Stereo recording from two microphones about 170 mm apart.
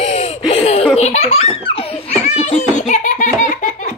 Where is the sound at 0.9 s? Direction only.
40° left (ahead or behind).